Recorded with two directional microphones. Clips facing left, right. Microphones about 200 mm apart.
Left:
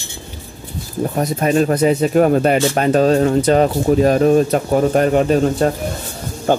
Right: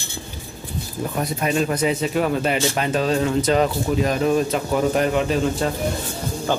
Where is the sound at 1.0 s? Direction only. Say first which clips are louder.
Left 6 dB; 40° left (ahead or behind).